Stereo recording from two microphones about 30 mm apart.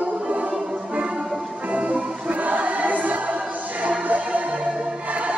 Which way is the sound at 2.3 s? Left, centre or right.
Right.